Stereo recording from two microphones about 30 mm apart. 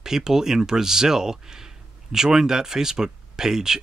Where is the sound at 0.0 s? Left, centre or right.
Centre.